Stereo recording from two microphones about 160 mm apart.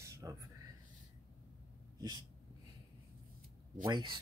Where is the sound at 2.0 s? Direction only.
25° right (ahead or behind).